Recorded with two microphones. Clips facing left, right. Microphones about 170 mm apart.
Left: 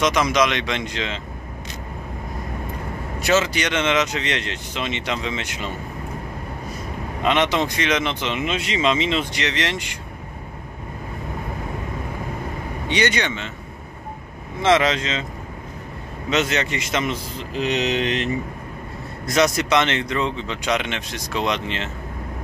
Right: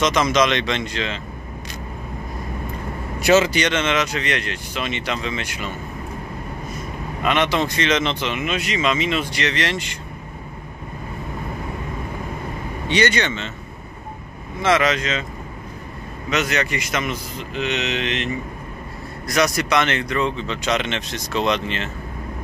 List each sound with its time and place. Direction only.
0.0 s speech: 10° left (ahead or behind)
3.2 s speech: 10° right (ahead or behind)
3.5 s speech: 10° left (ahead or behind)
7.2 s speech: 20° left (ahead or behind)
12.8 s speech: 15° left (ahead or behind)
14.6 s speech: 25° left (ahead or behind)
16.3 s speech: 25° left (ahead or behind)
19.2 s speech: 25° left (ahead or behind)